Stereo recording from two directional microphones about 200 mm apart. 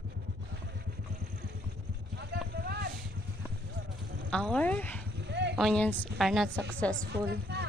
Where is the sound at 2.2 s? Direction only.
55° right (ahead or behind).